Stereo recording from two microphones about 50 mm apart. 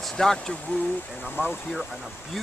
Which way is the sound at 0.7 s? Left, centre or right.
Left.